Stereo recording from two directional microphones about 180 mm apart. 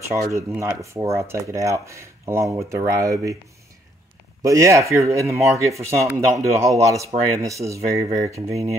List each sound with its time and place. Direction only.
0.3 s speech: 15° right (ahead or behind)
4.4 s speech: 20° right (ahead or behind)